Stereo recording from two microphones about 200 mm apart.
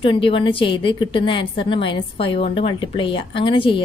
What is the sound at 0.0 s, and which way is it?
A woman's voice, 25° left (ahead or behind).